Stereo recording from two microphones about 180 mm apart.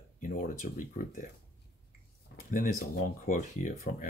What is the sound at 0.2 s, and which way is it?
Speech, 50° left (ahead or behind).